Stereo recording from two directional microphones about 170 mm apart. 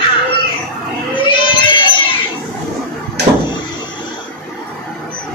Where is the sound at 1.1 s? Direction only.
30° left (ahead or behind).